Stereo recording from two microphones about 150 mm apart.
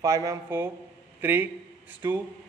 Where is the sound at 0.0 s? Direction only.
25° right (ahead or behind).